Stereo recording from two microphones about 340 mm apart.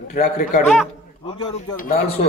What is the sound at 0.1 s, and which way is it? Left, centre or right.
Speech, left.